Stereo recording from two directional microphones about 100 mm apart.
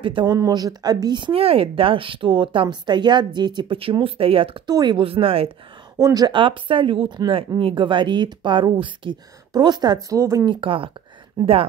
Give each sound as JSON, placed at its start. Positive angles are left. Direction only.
{"t": 0.0, "sound": "speech", "side_deg": -50}
{"t": 0.5, "sound": "speech", "side_deg": -40}
{"t": 1.3, "sound": "a woman's voice", "side_deg": -70}
{"t": 4.6, "sound": "speech", "side_deg": -45}
{"t": 5.0, "sound": "speech", "side_deg": -70}
{"t": 5.9, "sound": "speech", "side_deg": -35}
{"t": 6.3, "sound": "a woman's voice", "side_deg": -60}
{"t": 9.5, "sound": "speech", "side_deg": -45}
{"t": 10.0, "sound": "speech", "side_deg": -30}
{"t": 10.4, "sound": "a woman's voice", "side_deg": -55}